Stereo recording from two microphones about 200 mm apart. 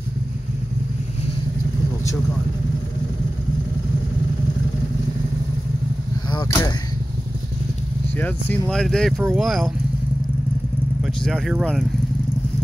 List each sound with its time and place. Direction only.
6.3 s arrow: 20° left (ahead or behind)
8.2 s speech: 5° left (ahead or behind)
11.0 s speech: centre (ahead or behind)